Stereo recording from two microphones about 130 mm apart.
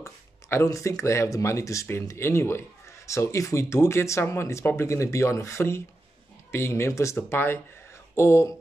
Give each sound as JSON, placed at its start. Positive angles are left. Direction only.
{"t": 0.0, "sound": "speech", "side_deg": 20}